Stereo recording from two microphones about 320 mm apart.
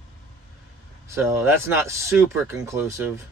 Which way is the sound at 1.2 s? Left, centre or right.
Centre.